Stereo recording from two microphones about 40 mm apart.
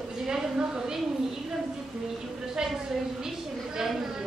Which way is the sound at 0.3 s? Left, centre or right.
Centre.